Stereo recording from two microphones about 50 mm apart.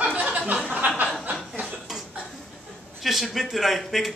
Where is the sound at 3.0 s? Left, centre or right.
Centre.